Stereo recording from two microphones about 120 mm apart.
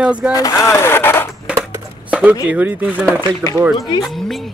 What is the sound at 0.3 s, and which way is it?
Speech, 30° left (ahead or behind).